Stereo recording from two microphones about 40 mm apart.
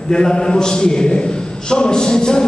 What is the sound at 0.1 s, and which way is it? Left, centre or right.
A man's voice, centre.